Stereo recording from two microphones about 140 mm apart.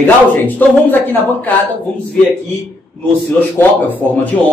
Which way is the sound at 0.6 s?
15° left (ahead or behind).